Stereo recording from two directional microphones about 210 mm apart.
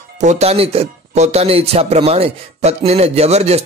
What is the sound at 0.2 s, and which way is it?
A man's voice, 30° right (ahead or behind).